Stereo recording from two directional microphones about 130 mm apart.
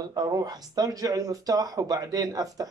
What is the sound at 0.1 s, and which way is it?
Speech, 30° right (ahead or behind).